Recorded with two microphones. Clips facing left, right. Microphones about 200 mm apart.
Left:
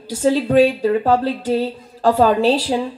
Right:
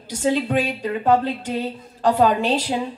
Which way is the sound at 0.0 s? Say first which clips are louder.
Left 4 dB; 40° left (ahead or behind).